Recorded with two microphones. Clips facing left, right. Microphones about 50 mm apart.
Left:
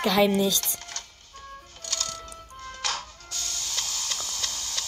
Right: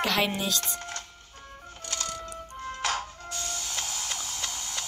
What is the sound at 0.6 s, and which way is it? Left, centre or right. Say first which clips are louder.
Music: right 3 dB; right.